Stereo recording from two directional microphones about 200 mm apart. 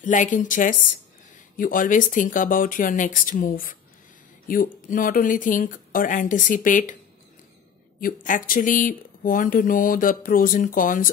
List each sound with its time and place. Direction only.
0.0 s speech: 40° left (ahead or behind)
8.0 s speech: 45° left (ahead or behind)